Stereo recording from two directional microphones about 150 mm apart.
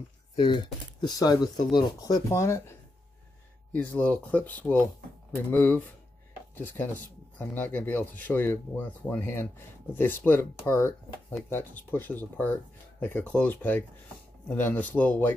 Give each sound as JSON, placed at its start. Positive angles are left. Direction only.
{"t": 0.4, "sound": "speech", "side_deg": 30}
{"t": 3.7, "sound": "speech", "side_deg": 10}